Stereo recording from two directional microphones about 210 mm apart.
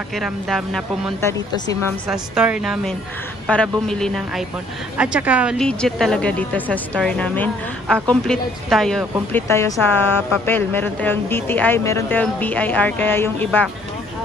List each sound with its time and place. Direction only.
0.1 s speech: centre (ahead or behind)
1.2 s speech: 15° left (ahead or behind)
2.0 s speech: 5° right (ahead or behind)
9.5 s speech: 10° left (ahead or behind)